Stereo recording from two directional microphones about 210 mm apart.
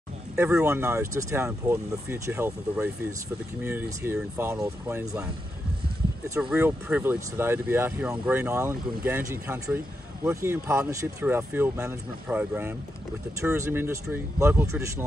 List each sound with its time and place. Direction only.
0.4 s speech: 15° right (ahead or behind)